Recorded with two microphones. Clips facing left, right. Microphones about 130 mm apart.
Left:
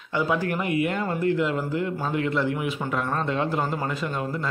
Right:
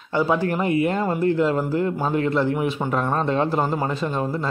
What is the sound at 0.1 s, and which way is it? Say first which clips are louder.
Speech: right 4 dB; 35° right (ahead or behind).